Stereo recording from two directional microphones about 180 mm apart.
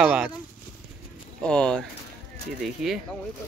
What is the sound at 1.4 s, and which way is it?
Speech, 5° left (ahead or behind).